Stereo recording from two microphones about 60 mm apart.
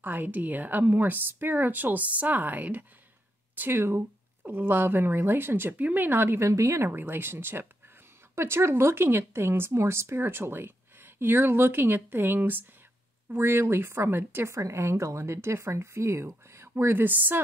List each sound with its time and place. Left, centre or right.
0.0 s speech: right
3.5 s speech: right
6.4 s speech: right
6.9 s speech: right